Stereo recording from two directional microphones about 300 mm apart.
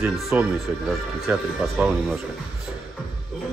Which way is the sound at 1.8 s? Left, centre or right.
Centre.